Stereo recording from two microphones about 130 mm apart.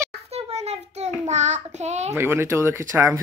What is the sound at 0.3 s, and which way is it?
Child singing, 55° right (ahead or behind).